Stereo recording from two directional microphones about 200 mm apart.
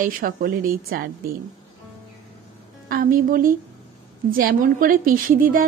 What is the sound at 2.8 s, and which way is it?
A woman's voice, 45° right (ahead or behind).